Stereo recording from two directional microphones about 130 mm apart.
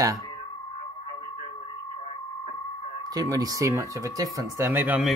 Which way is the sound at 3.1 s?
30° right (ahead or behind).